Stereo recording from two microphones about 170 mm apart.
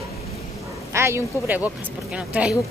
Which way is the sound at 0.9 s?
15° right (ahead or behind).